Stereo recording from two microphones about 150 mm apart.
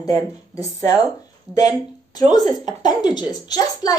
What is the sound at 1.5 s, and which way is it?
A child's voice, 25° left (ahead or behind).